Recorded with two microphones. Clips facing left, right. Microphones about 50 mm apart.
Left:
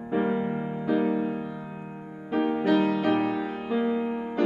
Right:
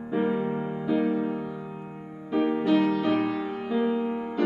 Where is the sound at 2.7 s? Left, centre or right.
Centre.